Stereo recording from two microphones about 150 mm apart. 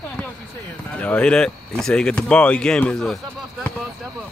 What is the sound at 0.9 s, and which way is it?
Speech, 10° left (ahead or behind).